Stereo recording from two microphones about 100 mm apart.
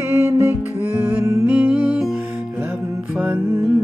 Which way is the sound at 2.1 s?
20° right (ahead or behind).